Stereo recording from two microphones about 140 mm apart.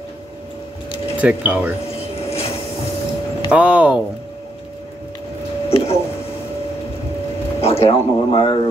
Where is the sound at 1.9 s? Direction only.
45° left (ahead or behind).